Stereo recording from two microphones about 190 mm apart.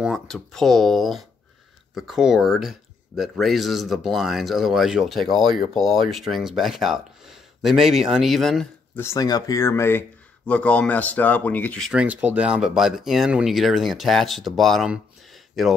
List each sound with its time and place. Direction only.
0.0 s speech: centre (ahead or behind)
5.4 s speech: 25° right (ahead or behind)
5.8 s speech: centre (ahead or behind)
9.0 s speech: 20° left (ahead or behind)
11.9 s speech: 5° right (ahead or behind)